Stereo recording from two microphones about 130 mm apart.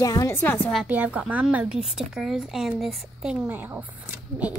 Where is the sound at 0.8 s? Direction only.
10° right (ahead or behind).